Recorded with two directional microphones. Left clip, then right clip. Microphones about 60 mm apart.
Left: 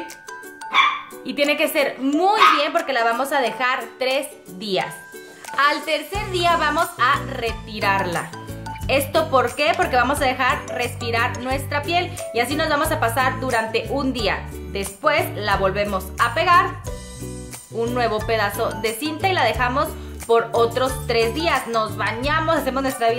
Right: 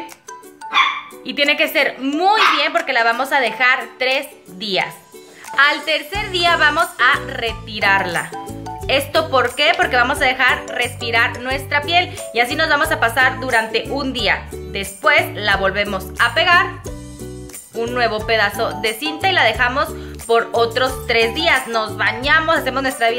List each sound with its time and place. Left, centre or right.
1.2 s a woman's voice: left
2.1 s speech: left
2.7 s a woman's voice: left
18.3 s a woman's voice: left; by 22.8 s centre
22.8 s a woman's voice: left